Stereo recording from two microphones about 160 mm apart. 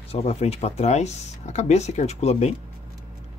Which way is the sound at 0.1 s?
40° left (ahead or behind).